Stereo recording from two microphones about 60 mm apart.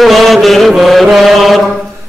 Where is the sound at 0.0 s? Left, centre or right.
Centre.